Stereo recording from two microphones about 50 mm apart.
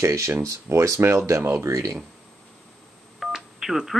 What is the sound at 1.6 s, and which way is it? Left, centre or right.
Speech, right.